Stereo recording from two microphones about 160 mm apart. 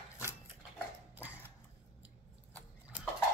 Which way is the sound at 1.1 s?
10° right (ahead or behind).